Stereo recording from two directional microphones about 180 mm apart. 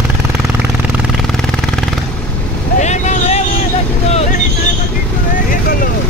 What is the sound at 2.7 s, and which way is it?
Vehicle, 40° left (ahead or behind).